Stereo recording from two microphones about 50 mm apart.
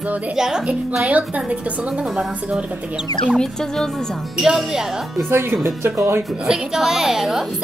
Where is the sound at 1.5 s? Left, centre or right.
Right.